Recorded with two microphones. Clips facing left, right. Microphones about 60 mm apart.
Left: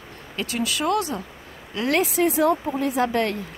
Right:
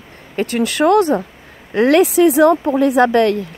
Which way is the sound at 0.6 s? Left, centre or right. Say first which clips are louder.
Right 10 dB; right.